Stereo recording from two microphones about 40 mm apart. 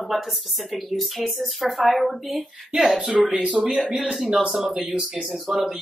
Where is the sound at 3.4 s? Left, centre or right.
Right.